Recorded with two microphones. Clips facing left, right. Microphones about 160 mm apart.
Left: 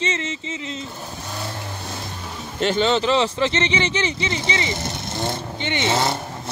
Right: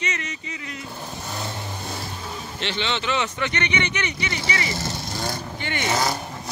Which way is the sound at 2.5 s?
45° left (ahead or behind).